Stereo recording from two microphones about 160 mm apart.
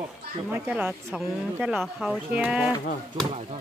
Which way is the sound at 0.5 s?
10° right (ahead or behind).